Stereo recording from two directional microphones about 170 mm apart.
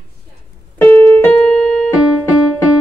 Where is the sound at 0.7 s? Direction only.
15° left (ahead or behind).